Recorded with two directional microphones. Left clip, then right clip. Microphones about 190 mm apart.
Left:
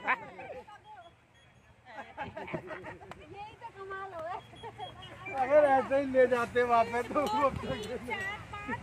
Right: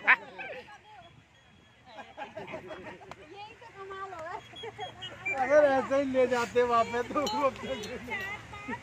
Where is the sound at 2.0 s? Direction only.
20° right (ahead or behind).